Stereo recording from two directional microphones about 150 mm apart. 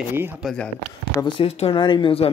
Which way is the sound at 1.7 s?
30° left (ahead or behind).